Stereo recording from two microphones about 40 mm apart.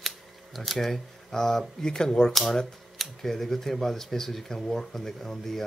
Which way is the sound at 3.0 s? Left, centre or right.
Centre.